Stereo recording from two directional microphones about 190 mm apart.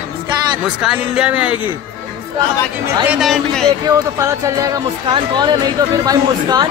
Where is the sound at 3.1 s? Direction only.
Centre (ahead or behind).